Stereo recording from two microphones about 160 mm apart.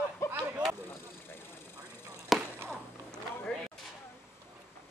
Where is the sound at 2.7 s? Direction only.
5° left (ahead or behind).